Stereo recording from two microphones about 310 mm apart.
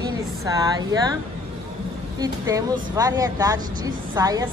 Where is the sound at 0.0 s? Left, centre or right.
Centre.